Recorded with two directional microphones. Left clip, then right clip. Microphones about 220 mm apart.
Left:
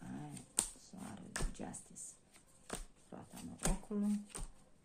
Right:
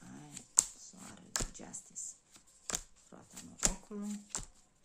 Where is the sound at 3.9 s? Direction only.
5° right (ahead or behind).